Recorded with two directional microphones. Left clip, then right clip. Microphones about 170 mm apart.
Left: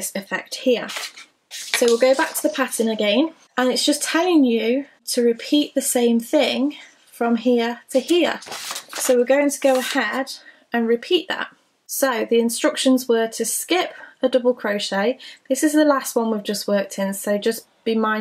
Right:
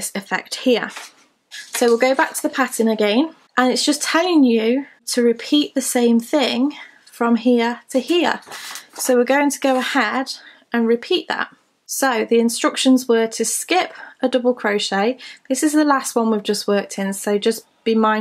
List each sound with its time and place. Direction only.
0.3 s speech: 30° right (ahead or behind)
1.9 s speech: 35° right (ahead or behind)